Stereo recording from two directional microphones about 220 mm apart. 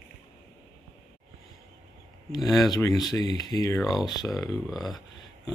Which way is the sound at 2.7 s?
15° left (ahead or behind).